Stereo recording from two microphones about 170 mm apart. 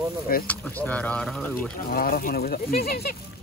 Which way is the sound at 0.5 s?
10° left (ahead or behind).